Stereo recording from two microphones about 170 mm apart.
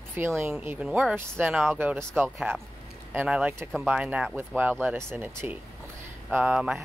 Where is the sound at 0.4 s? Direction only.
15° right (ahead or behind).